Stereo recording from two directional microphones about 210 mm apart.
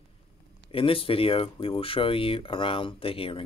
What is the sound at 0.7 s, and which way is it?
Speech, 25° left (ahead or behind).